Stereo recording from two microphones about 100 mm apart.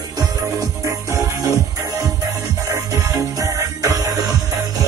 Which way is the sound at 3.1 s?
30° right (ahead or behind).